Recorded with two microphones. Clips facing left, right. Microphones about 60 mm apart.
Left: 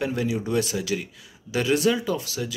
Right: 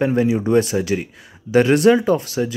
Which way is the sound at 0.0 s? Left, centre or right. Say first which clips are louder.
Right 8 dB; right.